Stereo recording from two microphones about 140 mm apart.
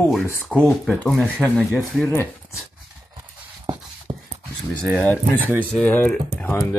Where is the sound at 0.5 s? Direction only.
5° left (ahead or behind).